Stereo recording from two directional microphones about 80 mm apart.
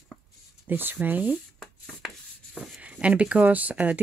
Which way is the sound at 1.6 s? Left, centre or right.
Centre.